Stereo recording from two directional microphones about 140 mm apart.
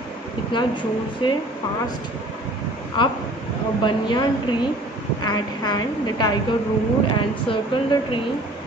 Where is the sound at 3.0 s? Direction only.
35° left (ahead or behind).